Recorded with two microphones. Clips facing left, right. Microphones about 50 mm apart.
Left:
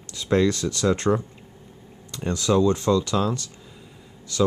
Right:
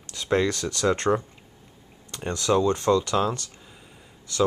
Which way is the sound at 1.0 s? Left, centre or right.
Centre.